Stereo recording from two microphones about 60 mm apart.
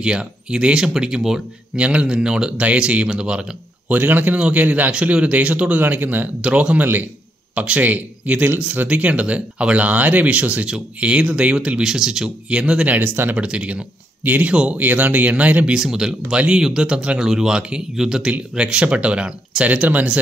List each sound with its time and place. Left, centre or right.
0.0 s speech: centre
1.8 s speech: right
2.5 s a man's voice: right
3.9 s a man's voice: right
11.8 s a man's voice: centre; by 13.4 s right
13.4 s speech: centre
14.8 s a man's voice: right
15.7 s speech: centre
19.7 s a man's voice: right